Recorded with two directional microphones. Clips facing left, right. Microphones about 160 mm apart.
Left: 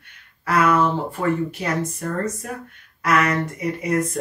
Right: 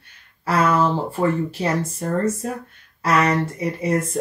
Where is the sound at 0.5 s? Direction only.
30° right (ahead or behind).